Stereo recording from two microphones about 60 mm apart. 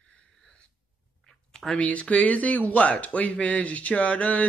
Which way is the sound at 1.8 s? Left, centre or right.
Left.